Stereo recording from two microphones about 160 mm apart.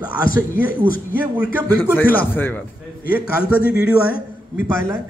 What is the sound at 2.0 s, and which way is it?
Speech, 10° left (ahead or behind).